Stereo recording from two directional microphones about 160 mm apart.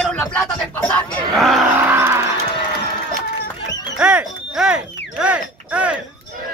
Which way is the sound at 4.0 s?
5° right (ahead or behind).